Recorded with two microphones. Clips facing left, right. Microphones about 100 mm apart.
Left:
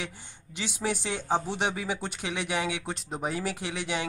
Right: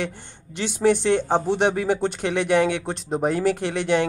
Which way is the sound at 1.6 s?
60° right (ahead or behind).